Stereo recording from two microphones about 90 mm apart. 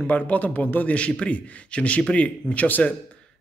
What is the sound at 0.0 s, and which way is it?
A man's voice, 20° left (ahead or behind).